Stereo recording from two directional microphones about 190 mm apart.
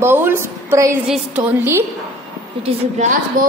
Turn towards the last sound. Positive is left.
turn(degrees=-35)  # may be behind; listen again after turning